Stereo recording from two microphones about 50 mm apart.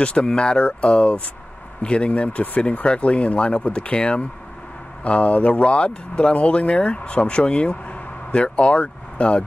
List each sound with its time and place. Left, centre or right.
0.0 s speech: left